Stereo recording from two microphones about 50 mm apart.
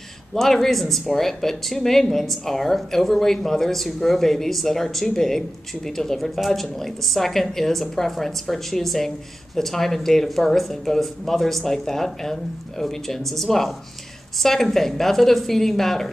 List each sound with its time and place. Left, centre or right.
0.3 s speech: centre